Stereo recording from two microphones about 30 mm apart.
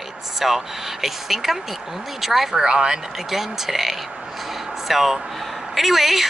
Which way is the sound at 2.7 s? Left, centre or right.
Right.